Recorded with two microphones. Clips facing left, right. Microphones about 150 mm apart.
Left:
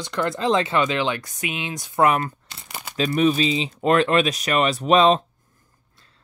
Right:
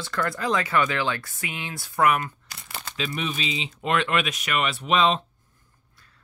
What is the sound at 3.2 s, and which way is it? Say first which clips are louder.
Speech: left 13 dB; 40° left (ahead or behind).